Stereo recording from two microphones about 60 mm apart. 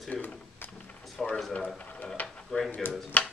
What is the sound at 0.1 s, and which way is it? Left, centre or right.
Drawer open or close, left.